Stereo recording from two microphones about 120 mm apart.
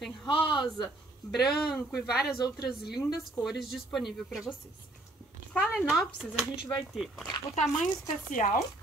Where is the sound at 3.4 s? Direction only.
Centre (ahead or behind).